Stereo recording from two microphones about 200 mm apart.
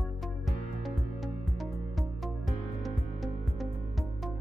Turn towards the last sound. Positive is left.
turn(degrees=0)  # may be behind; listen again after turning